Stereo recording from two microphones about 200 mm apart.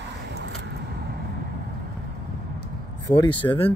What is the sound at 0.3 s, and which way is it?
Vehicle, 60° right (ahead or behind).